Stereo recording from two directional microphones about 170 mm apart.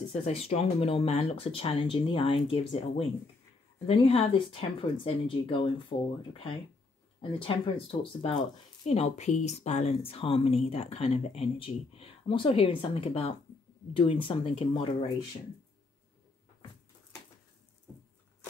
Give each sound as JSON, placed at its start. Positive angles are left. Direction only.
{"t": 0.1, "sound": "speech", "side_deg": 35}